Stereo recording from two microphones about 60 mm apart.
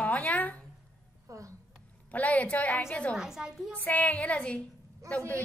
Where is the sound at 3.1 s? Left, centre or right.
Centre.